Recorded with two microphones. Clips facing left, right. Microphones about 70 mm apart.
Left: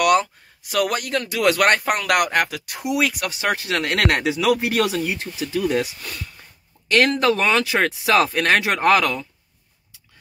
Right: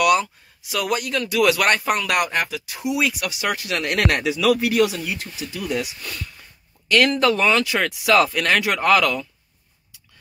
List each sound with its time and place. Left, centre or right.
0.0 s speech: left
4.8 s speech: left